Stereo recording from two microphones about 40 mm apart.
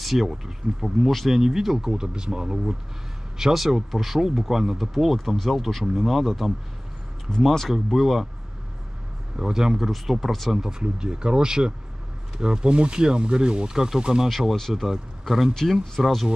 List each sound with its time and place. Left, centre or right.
0.0 s speech: centre
1.9 s speech: centre
3.5 s speech: centre
9.4 s speech: centre
10.5 s speech: centre
14.7 s speech: centre